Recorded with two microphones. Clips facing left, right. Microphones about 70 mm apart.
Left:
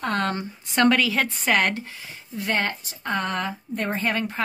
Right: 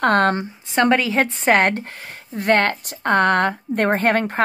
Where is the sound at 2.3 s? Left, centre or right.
Right.